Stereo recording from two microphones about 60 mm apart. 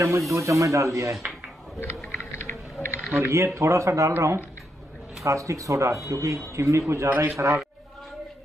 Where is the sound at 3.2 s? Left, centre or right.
Right.